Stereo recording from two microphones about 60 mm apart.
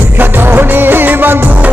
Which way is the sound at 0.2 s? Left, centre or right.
Right.